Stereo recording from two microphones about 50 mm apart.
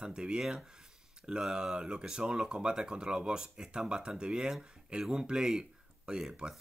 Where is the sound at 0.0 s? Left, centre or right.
Centre.